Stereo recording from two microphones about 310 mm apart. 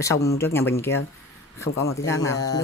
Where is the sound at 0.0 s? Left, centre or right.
Centre.